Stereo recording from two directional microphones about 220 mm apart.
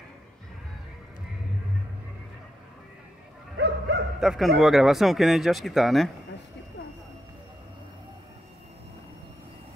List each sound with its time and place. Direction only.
3.5 s bow-wow: 50° right (ahead or behind)
4.2 s speech: centre (ahead or behind)